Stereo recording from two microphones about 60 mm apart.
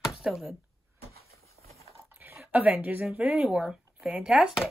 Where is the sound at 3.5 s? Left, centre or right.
Centre.